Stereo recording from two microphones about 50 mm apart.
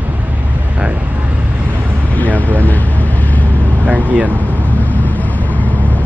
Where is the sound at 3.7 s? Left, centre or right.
Right.